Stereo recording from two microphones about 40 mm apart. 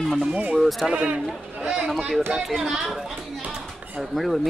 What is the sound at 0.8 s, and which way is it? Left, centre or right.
Speech, right.